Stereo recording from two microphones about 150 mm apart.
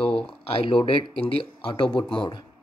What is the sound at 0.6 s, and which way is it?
Speech, 35° left (ahead or behind).